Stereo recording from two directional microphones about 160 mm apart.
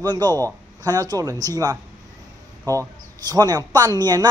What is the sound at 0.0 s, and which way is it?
Speech, 25° right (ahead or behind).